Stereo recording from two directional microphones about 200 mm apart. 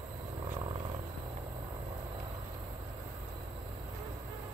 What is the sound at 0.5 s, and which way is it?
Vehicle, 25° right (ahead or behind).